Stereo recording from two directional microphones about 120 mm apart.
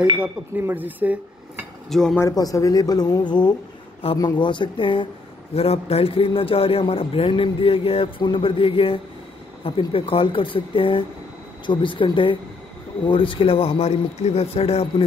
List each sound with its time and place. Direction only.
0.6 s speech: 15° right (ahead or behind)
1.9 s speech: 5° left (ahead or behind)
2.1 s a man's voice: 25° left (ahead or behind); by 5.0 s 45° left (ahead or behind)
5.5 s a man's voice: 55° left (ahead or behind)